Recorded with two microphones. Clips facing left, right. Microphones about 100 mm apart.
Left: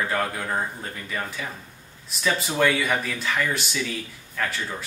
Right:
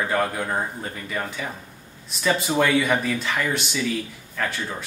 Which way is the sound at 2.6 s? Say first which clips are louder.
Right 1 dB; centre (ahead or behind).